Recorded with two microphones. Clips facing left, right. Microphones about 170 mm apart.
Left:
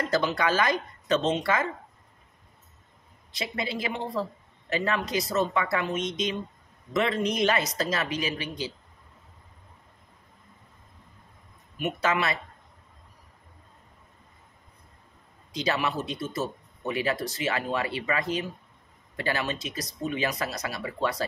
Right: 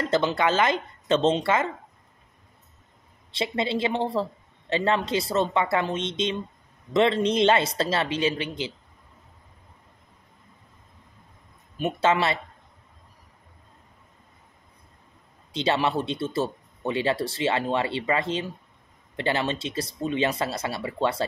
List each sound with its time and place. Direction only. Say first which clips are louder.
0.0 s speech: right 3 dB; 25° right (ahead or behind)
3.3 s speech: right 6 dB; 25° right (ahead or behind)
11.7 s speech: right 4 dB; 30° right (ahead or behind)
15.5 s speech: right 4 dB; 25° right (ahead or behind)